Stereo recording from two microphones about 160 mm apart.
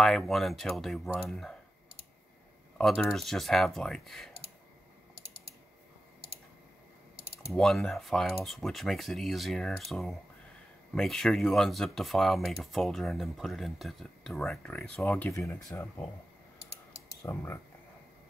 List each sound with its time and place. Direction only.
0.0 s speech: centre (ahead or behind)
2.8 s speech: 5° left (ahead or behind)
7.5 s speech: 5° left (ahead or behind)
17.2 s speech: 15° left (ahead or behind)